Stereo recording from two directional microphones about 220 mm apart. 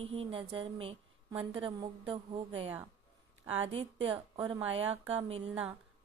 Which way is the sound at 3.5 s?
25° right (ahead or behind).